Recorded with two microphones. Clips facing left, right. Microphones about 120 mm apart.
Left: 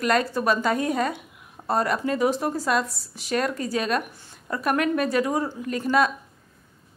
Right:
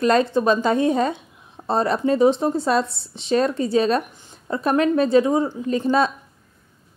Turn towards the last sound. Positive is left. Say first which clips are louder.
# right 3 dB
turn(degrees=-25)  # may be behind; listen again after turning